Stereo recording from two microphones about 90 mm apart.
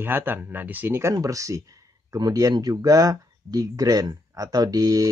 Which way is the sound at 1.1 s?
40° right (ahead or behind).